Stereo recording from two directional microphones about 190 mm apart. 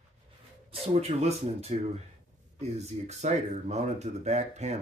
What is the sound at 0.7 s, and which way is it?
Speech, 35° right (ahead or behind).